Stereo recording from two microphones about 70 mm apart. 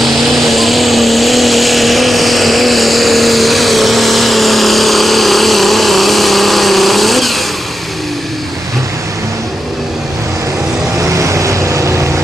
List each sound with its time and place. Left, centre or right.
0.0 s vehicle: centre
11.0 s vehicle: right